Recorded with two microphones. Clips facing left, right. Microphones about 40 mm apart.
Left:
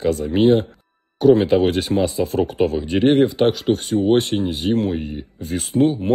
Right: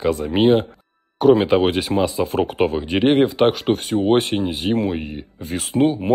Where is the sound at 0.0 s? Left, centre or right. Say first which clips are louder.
Even; right.